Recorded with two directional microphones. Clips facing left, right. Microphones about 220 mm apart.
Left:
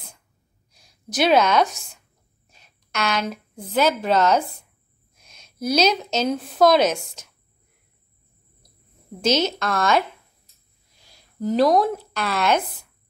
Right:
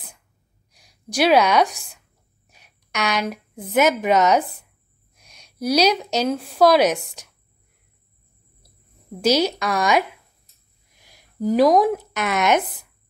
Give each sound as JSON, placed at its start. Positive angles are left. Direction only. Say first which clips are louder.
{"t": 1.1, "sound": "a woman's voice", "louder": "right 1 dB", "side_deg": -10}
{"t": 1.8, "sound": "speech", "louder": "right 1 dB", "side_deg": 0}
{"t": 2.5, "sound": "a woman's voice", "louder": "right 1 dB", "side_deg": -15}
{"t": 5.6, "sound": "a woman's voice", "louder": "right 2 dB", "side_deg": -10}
{"t": 6.3, "sound": "a woman's voice", "louder": "even", "side_deg": 0}
{"t": 6.6, "sound": "a woman's voice", "louder": "right 1 dB", "side_deg": -10}
{"t": 9.5, "sound": "a woman's voice", "louder": "right 1 dB", "side_deg": -15}